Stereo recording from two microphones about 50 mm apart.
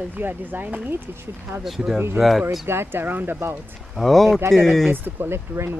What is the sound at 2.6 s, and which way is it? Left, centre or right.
Speech, right.